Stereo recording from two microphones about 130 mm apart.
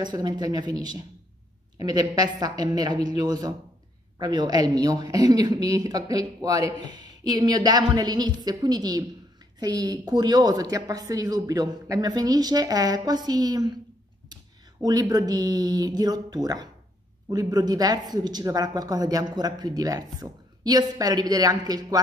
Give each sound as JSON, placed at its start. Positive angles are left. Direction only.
{"t": 0.0, "sound": "a woman's voice", "side_deg": -35}